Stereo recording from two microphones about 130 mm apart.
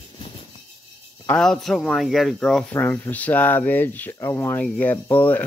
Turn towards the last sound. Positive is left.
turn(degrees=15)  # may be behind; listen again after turning